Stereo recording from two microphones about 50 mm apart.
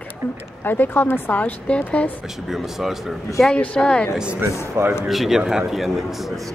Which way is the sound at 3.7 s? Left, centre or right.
Centre.